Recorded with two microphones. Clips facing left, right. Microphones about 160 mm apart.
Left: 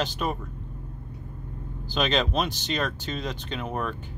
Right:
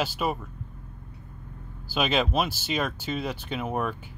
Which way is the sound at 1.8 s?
10° right (ahead or behind).